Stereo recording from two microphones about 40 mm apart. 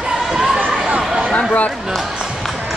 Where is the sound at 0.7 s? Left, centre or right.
Right.